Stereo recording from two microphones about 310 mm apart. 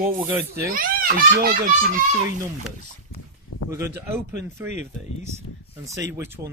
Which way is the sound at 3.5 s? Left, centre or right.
Left.